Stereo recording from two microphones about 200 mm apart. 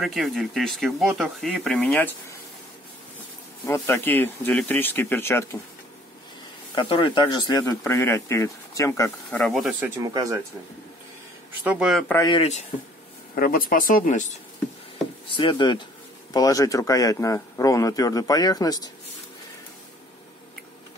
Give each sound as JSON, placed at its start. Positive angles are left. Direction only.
{"t": 0.0, "sound": "speech", "side_deg": 0}
{"t": 3.6, "sound": "speech", "side_deg": 15}
{"t": 6.7, "sound": "speech", "side_deg": 25}
{"t": 10.0, "sound": "speech", "side_deg": -15}
{"t": 11.6, "sound": "speech", "side_deg": -5}
{"t": 12.3, "sound": "speech", "side_deg": 30}
{"t": 13.3, "sound": "speech", "side_deg": 45}
{"t": 15.3, "sound": "speech", "side_deg": 25}